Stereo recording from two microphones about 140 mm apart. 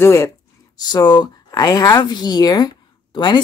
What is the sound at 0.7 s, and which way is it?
Speech, 30° left (ahead or behind).